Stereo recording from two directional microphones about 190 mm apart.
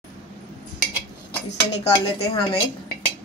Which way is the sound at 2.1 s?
35° left (ahead or behind).